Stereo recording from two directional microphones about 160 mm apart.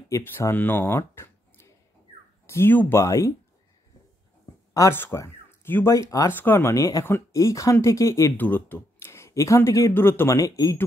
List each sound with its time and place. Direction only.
0.1 s speech: 15° left (ahead or behind)
4.7 s speech: 15° left (ahead or behind)